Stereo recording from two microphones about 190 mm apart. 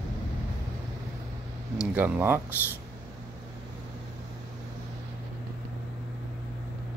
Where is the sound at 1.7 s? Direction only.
10° right (ahead or behind).